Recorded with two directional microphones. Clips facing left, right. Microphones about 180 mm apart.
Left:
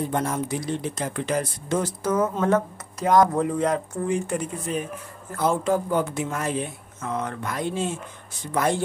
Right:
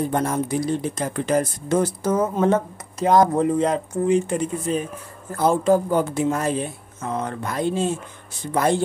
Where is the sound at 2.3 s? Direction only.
25° right (ahead or behind).